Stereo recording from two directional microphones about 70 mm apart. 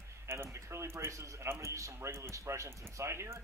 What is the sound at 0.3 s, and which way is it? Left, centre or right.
Speech, right.